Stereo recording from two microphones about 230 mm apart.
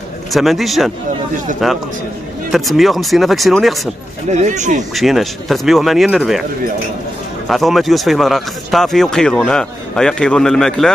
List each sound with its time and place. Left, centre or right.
0.3 s a man's voice: centre
4.3 s speech: right
4.9 s a man's voice: centre
7.4 s a man's voice: centre